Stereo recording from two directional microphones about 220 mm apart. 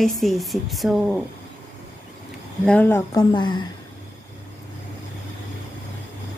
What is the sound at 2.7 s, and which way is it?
Speech, 10° left (ahead or behind).